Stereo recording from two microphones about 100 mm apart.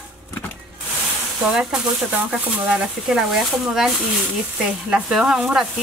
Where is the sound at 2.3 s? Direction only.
5° right (ahead or behind).